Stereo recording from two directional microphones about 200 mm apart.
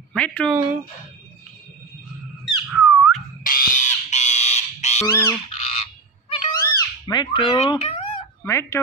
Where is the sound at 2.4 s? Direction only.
5° right (ahead or behind).